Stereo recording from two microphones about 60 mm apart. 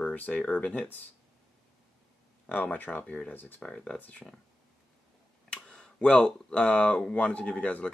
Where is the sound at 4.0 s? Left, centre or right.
Left.